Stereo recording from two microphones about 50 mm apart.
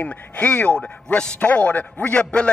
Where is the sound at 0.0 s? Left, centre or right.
Left.